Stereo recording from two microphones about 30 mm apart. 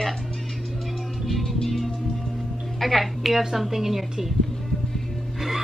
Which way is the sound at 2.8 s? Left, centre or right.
Centre.